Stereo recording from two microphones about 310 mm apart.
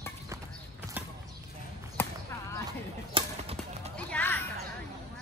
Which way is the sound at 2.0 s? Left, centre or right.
Centre.